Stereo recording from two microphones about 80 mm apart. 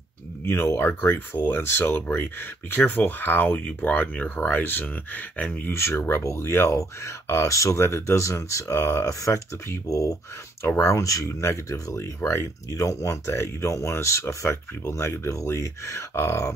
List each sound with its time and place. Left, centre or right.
0.5 s speech: left
5.7 s speech: left
10.6 s speech: left